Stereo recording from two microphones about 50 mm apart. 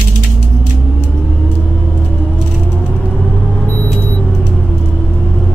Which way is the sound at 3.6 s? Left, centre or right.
Left.